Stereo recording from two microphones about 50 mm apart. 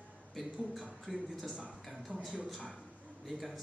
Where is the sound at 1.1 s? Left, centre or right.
Centre.